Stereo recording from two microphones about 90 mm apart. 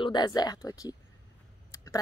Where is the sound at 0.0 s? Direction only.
50° left (ahead or behind).